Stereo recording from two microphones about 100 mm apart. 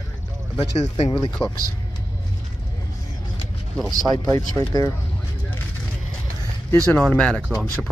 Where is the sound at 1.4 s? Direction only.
15° left (ahead or behind).